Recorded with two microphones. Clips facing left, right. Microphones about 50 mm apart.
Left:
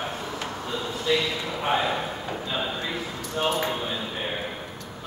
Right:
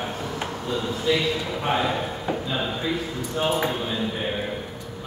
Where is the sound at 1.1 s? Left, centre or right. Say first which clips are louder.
Right 2 dB; centre.